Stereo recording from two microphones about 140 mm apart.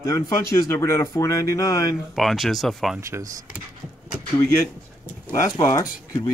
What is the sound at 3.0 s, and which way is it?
Speech, 20° right (ahead or behind).